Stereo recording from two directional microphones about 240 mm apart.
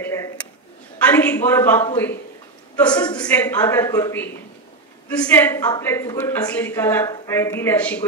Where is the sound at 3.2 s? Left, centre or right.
Centre.